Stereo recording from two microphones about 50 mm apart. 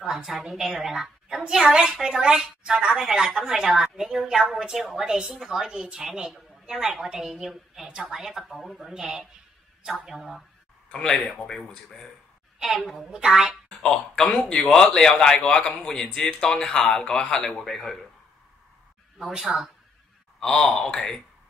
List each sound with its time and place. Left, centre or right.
0.0 s a woman's voice: centre
8.9 s a woman's voice: centre
10.9 s a man's voice: centre
12.5 s a woman's voice: centre
13.7 s a man's voice: centre
17.5 s a man's voice: centre
19.5 s a man's voice: centre
20.3 s a man's voice: centre